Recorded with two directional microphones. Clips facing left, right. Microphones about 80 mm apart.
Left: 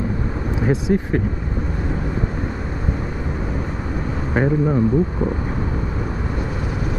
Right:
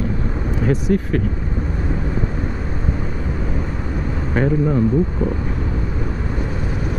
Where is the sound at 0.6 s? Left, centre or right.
Centre.